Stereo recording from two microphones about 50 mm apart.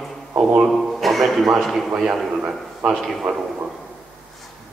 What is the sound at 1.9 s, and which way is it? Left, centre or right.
A man's voice, centre.